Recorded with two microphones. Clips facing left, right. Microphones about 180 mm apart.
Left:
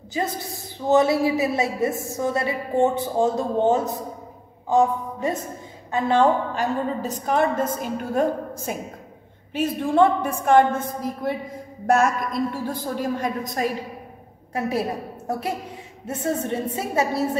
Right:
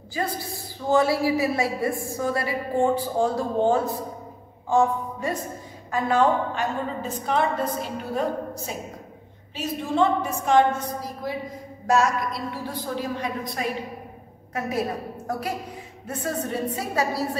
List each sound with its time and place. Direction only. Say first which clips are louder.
0.1 s a woman's voice: left 2 dB; 20° left (ahead or behind); by 13.7 s 45° left (ahead or behind)
14.5 s a woman's voice: left 2 dB; 30° left (ahead or behind)